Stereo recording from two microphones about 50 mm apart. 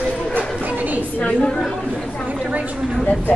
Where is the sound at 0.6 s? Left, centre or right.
Right.